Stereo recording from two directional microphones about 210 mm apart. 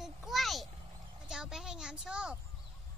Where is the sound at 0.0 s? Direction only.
Centre (ahead or behind).